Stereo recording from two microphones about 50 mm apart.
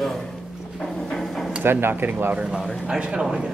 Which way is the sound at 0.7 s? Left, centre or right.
Centre.